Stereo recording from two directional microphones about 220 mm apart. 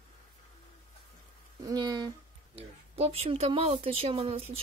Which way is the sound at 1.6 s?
20° right (ahead or behind).